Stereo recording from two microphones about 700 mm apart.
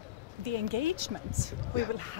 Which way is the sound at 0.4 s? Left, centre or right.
Right.